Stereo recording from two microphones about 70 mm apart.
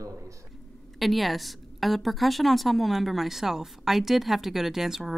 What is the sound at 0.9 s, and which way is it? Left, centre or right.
A woman's voice, centre.